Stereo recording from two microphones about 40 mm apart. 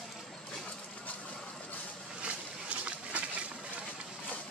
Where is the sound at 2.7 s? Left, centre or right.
Right.